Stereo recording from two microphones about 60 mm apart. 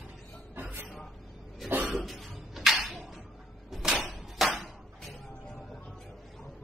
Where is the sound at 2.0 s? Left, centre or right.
Centre.